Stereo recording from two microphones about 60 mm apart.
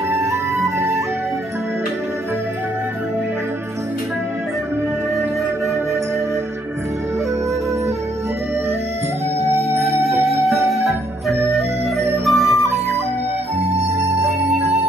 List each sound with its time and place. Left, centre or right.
0.1 s flute: right
9.5 s music: right
12.3 s music: centre
13.9 s music: right